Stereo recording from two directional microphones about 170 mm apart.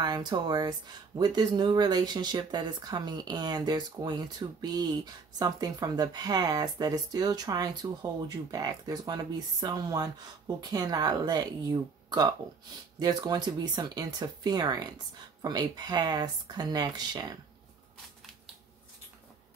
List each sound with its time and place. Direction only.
0.0 s speech: 25° right (ahead or behind)
13.0 s speech: 25° right (ahead or behind)